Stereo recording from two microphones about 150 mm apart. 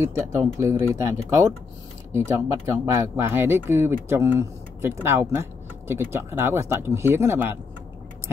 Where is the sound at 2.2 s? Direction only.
20° right (ahead or behind).